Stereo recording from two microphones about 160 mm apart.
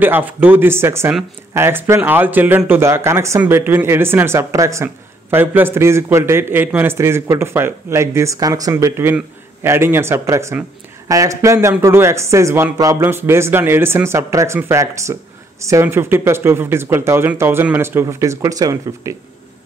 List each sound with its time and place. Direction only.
0.0 s speech: 10° right (ahead or behind)